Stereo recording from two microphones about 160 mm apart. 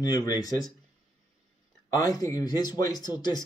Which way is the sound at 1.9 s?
20° left (ahead or behind).